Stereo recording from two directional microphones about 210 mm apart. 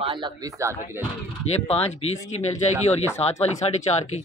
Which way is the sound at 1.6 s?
30° left (ahead or behind).